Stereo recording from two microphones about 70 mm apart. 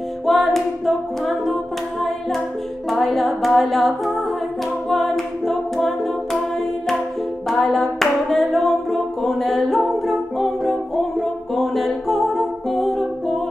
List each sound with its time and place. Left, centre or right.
0.3 s music: centre
2.9 s singing: centre
4.8 s a capella: centre
7.4 s music: centre